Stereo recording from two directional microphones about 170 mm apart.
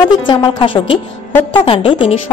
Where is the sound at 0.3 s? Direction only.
30° left (ahead or behind).